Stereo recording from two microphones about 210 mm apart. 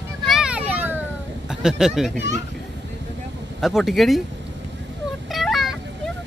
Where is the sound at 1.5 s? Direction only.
5° right (ahead or behind).